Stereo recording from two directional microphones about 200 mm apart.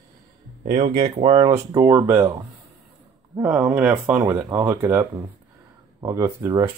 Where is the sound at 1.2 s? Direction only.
25° right (ahead or behind).